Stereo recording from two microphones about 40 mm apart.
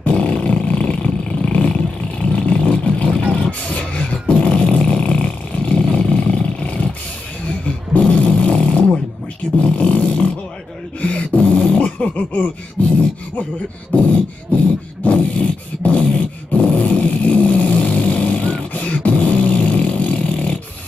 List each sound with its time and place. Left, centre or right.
0.0 s roar: left
2.3 s vehicle: left
7.9 s a sound: left
13.9 s beatboxing: left
15.0 s a sound: left
16.5 s vehicle: left